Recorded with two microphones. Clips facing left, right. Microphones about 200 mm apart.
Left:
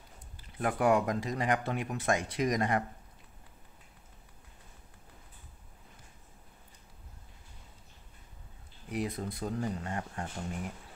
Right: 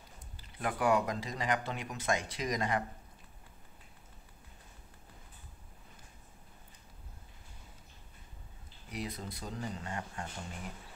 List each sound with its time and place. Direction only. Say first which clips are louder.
0.6 s speech: left 3 dB; 45° left (ahead or behind)
8.9 s speech: left 6 dB; 55° left (ahead or behind)
9.8 s speech: left 3 dB; 35° left (ahead or behind)